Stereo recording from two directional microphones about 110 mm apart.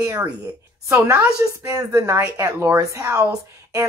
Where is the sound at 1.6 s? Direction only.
30° right (ahead or behind).